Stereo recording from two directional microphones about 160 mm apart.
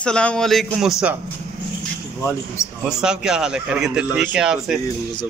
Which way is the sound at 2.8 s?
5° right (ahead or behind).